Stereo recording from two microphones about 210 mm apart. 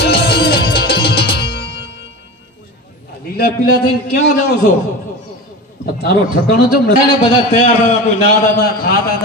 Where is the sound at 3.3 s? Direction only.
45° left (ahead or behind).